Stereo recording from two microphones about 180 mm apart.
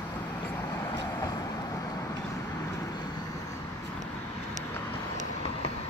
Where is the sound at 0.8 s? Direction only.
20° left (ahead or behind).